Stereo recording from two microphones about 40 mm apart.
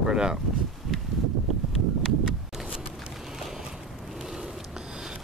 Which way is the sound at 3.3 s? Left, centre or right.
Centre.